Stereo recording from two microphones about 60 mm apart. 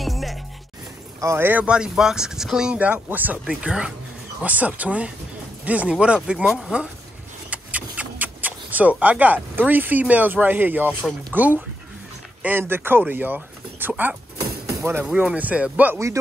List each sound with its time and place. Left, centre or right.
0.0 s music: centre
1.4 s speech: right
1.7 s speech: centre
2.8 s speech: right
3.4 s speech: centre; by 15.0 s right
15.3 s speech: right